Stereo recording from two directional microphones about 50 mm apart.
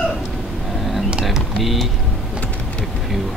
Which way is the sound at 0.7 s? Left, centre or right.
Centre.